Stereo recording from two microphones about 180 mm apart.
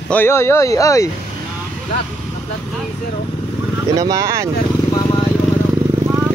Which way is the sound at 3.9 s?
20° right (ahead or behind).